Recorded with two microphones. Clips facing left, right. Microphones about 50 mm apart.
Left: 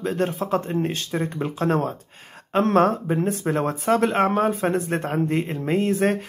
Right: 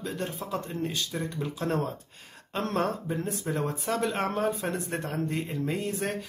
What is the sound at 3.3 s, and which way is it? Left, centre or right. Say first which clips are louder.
A man's voice: left 7 dB; left.